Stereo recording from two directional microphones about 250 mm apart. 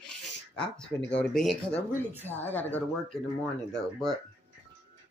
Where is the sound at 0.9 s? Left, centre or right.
Left.